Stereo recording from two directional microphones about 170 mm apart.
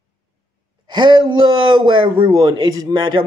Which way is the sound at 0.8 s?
25° right (ahead or behind).